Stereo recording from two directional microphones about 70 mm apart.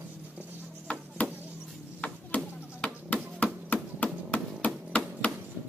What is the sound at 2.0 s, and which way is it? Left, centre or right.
Music, left.